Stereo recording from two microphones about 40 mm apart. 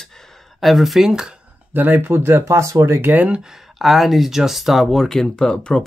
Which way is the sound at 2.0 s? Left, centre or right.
Right.